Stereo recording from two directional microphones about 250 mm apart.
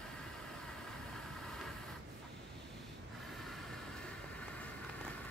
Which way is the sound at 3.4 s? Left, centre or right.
Centre.